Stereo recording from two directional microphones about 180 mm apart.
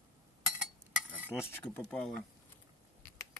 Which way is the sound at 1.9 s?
5° left (ahead or behind).